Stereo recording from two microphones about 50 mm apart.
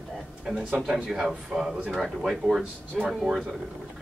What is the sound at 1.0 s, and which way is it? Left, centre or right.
Speech, centre.